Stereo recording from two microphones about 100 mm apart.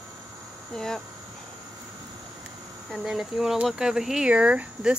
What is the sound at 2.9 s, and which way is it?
Speech, 5° right (ahead or behind).